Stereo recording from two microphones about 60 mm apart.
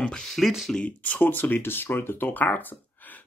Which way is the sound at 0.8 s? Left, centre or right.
Left.